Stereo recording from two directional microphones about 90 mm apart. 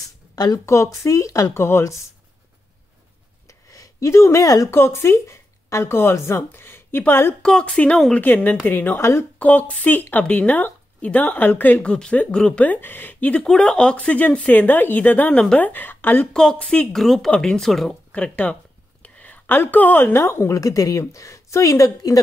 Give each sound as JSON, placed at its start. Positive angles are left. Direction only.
{"t": 0.7, "sound": "speech", "side_deg": 35}
{"t": 1.6, "sound": "a woman's voice", "side_deg": 30}
{"t": 3.4, "sound": "a sound", "side_deg": 40}
{"t": 4.7, "sound": "speech", "side_deg": 30}
{"t": 7.4, "sound": "a woman's voice", "side_deg": 10}
{"t": 16.3, "sound": "speech", "side_deg": 10}
{"t": 16.9, "sound": "speech", "side_deg": 5}
{"t": 18.1, "sound": "a woman's voice", "side_deg": 15}